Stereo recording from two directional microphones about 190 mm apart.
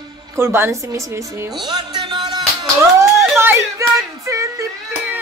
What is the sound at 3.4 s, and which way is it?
Speech, 15° right (ahead or behind).